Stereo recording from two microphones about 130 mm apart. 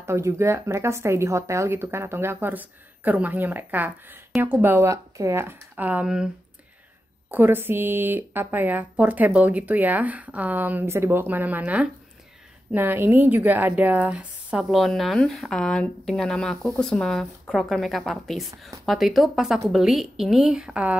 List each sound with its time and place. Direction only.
0.0 s a woman's voice: 20° right (ahead or behind)